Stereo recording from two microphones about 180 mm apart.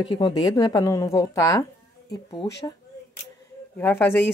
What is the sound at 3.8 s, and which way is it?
Speech, 10° left (ahead or behind).